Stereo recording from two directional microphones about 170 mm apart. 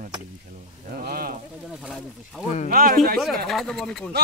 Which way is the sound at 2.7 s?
55° right (ahead or behind).